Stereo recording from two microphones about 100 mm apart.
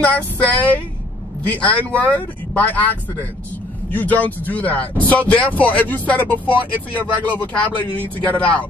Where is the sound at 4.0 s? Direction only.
15° left (ahead or behind).